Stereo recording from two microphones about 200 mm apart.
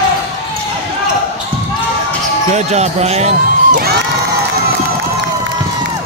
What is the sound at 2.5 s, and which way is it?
Speech, 35° right (ahead or behind).